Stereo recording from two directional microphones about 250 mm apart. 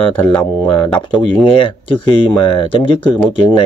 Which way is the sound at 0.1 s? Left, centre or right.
Centre.